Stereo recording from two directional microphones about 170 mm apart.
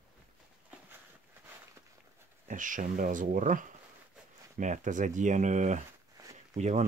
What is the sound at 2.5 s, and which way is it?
Speech, 50° right (ahead or behind).